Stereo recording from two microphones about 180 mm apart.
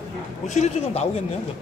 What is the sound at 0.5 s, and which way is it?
Speech, 35° left (ahead or behind).